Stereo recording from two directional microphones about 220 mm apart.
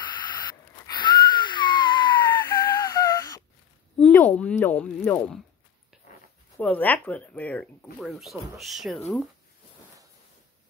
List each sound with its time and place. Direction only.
0.0 s wheeze: 20° left (ahead or behind)
4.0 s speech: 5° left (ahead or behind)
6.5 s speech: 5° left (ahead or behind)